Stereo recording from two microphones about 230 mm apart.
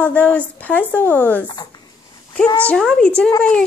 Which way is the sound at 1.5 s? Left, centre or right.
Centre.